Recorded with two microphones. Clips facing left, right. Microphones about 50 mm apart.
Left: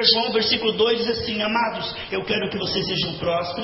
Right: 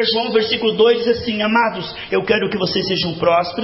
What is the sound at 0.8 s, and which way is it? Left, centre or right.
A man's voice, right.